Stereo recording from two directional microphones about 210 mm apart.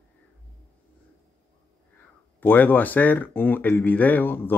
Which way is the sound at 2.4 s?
10° left (ahead or behind).